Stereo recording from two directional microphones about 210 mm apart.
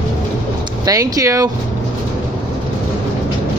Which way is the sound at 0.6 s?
15° right (ahead or behind).